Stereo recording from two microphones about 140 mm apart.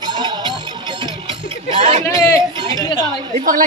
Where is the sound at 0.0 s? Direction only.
30° right (ahead or behind).